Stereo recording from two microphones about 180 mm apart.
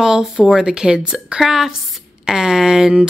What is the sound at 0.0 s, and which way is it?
Speech, 5° right (ahead or behind).